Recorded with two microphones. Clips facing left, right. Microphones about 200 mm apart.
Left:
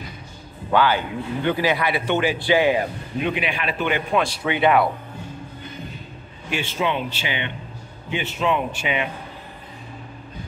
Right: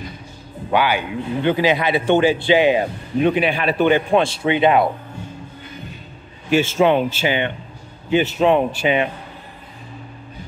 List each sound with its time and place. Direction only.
0.7 s speech: 15° right (ahead or behind)
3.3 s a man's voice: 35° right (ahead or behind)
6.5 s a man's voice: 45° right (ahead or behind)